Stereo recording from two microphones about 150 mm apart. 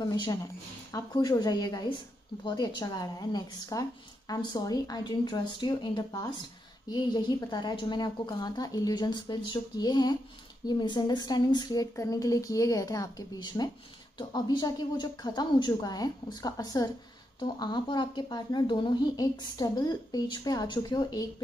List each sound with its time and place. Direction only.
0.0 s speech: 25° left (ahead or behind)